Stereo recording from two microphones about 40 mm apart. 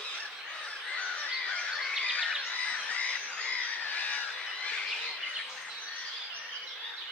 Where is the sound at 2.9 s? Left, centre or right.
Left.